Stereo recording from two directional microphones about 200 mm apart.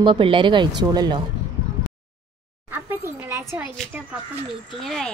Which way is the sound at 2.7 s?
10° right (ahead or behind).